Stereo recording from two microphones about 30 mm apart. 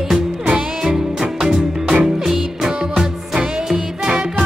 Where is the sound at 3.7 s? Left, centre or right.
Right.